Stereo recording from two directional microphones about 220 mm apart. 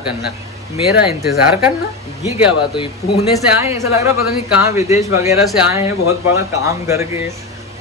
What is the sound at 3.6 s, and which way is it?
Speech, 15° right (ahead or behind).